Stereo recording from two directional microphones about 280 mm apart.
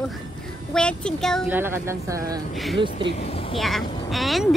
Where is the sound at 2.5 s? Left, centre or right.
Centre.